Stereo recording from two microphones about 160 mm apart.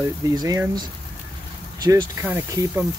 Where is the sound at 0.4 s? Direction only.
25° right (ahead or behind).